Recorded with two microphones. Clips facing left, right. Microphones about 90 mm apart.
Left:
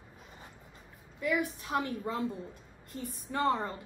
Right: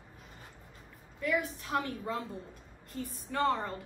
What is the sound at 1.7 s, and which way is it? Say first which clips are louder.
Speech: even; 5° left (ahead or behind).